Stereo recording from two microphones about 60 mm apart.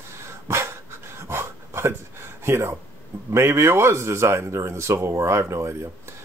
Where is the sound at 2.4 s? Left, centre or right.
Right.